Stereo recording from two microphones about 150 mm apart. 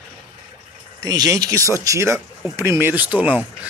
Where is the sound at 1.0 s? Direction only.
25° right (ahead or behind).